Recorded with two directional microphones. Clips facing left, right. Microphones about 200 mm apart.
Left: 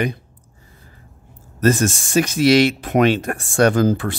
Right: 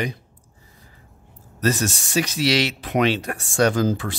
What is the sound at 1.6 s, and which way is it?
Speech, 50° left (ahead or behind).